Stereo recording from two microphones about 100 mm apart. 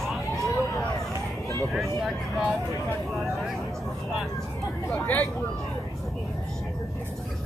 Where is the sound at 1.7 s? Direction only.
Centre (ahead or behind).